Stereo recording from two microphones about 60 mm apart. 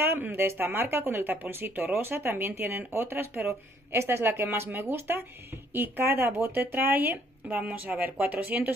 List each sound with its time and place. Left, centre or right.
0.0 s speech: right